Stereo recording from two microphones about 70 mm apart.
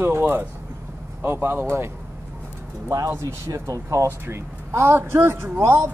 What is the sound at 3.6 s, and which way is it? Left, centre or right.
Speech, right.